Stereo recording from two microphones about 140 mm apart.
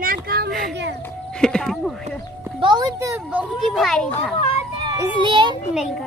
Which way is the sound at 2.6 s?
30° right (ahead or behind).